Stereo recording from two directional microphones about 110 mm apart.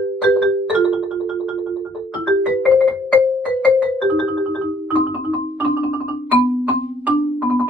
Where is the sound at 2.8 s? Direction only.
15° right (ahead or behind).